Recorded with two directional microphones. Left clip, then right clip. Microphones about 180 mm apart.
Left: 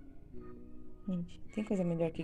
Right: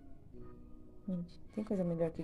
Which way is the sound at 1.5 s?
5° left (ahead or behind).